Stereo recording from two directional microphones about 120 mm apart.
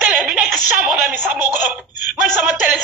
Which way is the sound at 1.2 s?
15° right (ahead or behind).